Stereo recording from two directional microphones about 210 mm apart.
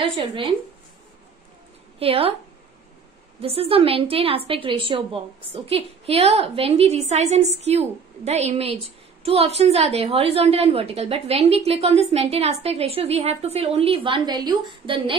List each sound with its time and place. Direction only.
0.0 s a woman's voice: 25° right (ahead or behind)
2.0 s a woman's voice: 25° right (ahead or behind)
3.3 s a woman's voice: 25° right (ahead or behind)